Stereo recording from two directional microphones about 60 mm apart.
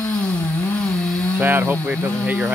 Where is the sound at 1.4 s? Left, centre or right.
Right.